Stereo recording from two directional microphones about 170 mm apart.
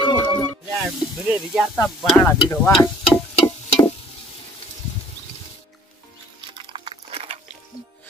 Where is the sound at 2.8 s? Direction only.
25° left (ahead or behind).